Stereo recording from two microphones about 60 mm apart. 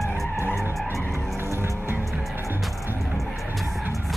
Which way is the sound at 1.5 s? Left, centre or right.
Right.